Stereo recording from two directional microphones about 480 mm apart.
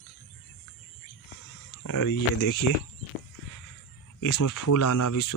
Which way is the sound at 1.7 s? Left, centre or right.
Left.